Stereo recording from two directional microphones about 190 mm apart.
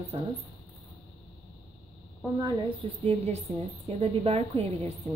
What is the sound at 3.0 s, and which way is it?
A woman's voice, 35° right (ahead or behind).